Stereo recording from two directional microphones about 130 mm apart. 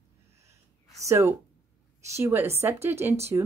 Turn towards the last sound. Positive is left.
turn(degrees=-25)  # may be behind; listen again after turning